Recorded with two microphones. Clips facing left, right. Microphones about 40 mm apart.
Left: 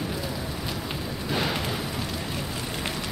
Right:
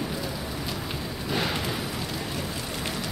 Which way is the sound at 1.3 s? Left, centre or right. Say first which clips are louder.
Left 1 dB; centre.